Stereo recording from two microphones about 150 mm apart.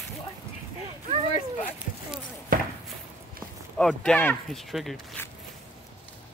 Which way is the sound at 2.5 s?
70° right (ahead or behind).